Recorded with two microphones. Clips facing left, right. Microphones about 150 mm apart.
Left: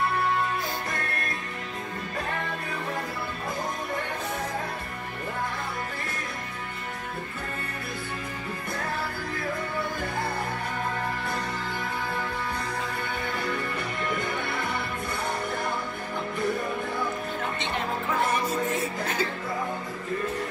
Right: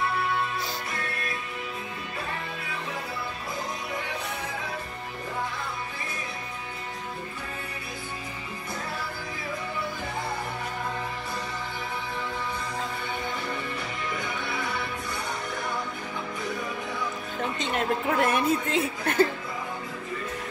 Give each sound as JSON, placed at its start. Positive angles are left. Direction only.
{"t": 18.0, "sound": "music", "side_deg": -60}